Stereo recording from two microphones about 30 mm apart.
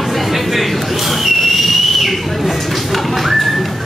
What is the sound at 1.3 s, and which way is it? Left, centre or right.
Whistle, centre.